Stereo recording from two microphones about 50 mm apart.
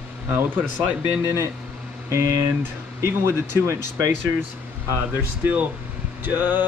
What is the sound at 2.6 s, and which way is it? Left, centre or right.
Speech, right.